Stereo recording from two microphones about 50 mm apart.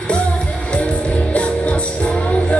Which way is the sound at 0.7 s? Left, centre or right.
Left.